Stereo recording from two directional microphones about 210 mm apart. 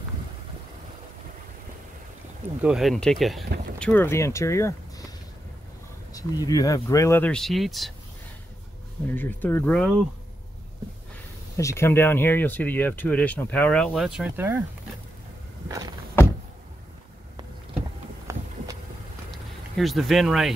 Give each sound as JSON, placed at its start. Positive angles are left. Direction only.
{"t": 2.6, "sound": "speech", "side_deg": 0}
{"t": 6.1, "sound": "speech", "side_deg": 15}
{"t": 9.0, "sound": "speech", "side_deg": 10}
{"t": 11.5, "sound": "speech", "side_deg": 15}
{"t": 18.3, "sound": "a sound", "side_deg": -15}
{"t": 19.3, "sound": "speech", "side_deg": 0}